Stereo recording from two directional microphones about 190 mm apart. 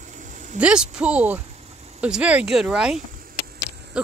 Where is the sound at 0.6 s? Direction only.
5° right (ahead or behind).